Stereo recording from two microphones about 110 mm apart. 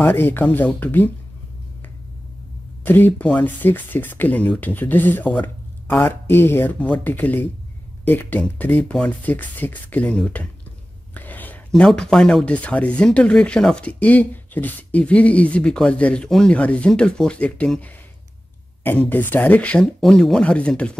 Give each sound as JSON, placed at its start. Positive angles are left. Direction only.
{"t": 0.0, "sound": "speech", "side_deg": 20}
{"t": 2.8, "sound": "speech", "side_deg": 15}
{"t": 19.0, "sound": "speech", "side_deg": 15}